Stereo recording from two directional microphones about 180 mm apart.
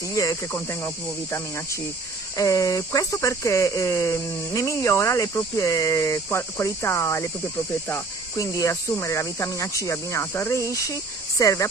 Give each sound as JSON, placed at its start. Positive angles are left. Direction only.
{"t": 0.1, "sound": "speech", "side_deg": 15}